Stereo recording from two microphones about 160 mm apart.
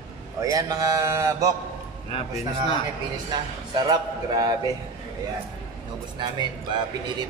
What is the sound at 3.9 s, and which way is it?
Mantra, 25° right (ahead or behind).